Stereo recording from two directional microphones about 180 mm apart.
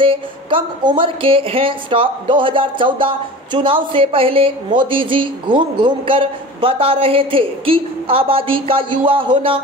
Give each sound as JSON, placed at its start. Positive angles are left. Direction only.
{"t": 0.0, "sound": "a woman's voice", "side_deg": -30}